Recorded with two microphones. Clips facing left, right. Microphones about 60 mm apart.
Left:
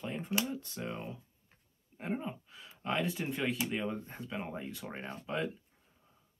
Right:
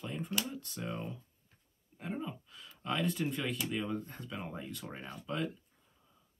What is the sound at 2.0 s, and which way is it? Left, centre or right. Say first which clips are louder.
Speech: left 2 dB; left.